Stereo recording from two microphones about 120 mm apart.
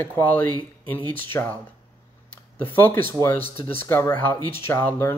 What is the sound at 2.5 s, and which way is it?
Speech, 20° left (ahead or behind).